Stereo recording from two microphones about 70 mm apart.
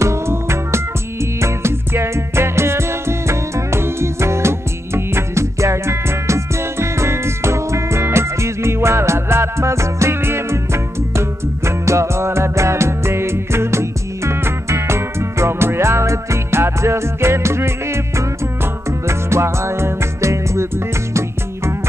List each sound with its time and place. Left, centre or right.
0.0 s music: right